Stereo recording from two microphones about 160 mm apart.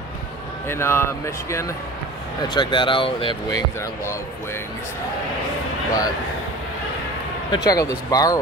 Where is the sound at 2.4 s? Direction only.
30° left (ahead or behind).